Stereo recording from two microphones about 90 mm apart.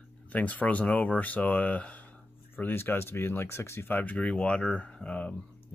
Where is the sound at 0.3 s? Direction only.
15° left (ahead or behind).